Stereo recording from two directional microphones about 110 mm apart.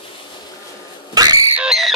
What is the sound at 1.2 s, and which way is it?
Frog, 35° right (ahead or behind).